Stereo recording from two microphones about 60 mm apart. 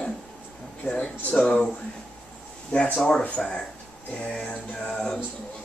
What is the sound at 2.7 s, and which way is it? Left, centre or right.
Speech, left.